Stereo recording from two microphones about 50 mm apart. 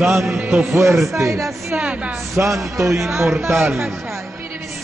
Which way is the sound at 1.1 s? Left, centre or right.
Right.